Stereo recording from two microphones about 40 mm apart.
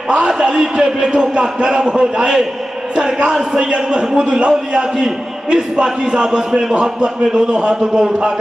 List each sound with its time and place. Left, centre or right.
0.3 s a man's voice: centre